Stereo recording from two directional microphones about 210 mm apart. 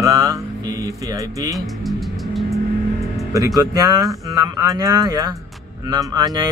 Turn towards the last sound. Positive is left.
turn(degrees=-20)  # may be behind; listen again after turning